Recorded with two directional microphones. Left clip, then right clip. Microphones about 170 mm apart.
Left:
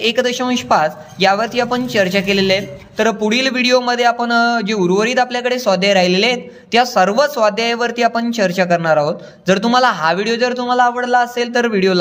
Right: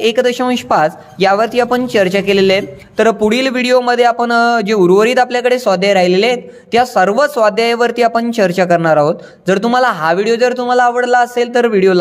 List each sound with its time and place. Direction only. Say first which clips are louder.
0.0 s speech: right 4 dB; 30° right (ahead or behind)